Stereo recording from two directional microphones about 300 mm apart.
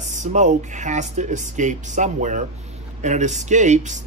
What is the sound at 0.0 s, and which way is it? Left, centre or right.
Speech, right.